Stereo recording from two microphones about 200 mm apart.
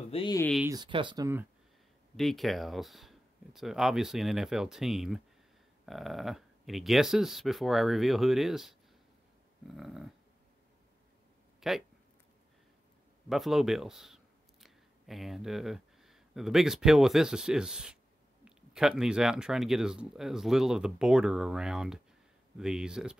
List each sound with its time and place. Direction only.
0.1 s speech: 25° left (ahead or behind)
0.7 s speech: 20° right (ahead or behind)
2.1 s speech: centre (ahead or behind)
9.8 s speech: centre (ahead or behind)
11.6 s speech: centre (ahead or behind)
13.3 s speech: centre (ahead or behind)